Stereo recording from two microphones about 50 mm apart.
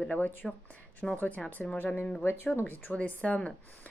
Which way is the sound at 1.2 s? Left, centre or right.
Left.